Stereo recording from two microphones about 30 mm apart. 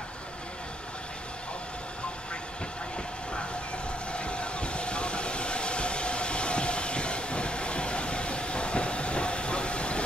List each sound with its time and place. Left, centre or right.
4.1 s vehicle: left